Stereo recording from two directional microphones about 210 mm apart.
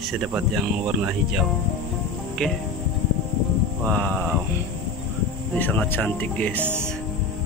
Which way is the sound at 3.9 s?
5° left (ahead or behind).